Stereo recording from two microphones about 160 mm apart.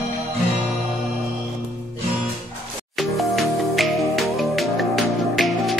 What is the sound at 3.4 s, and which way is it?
Music, centre (ahead or behind).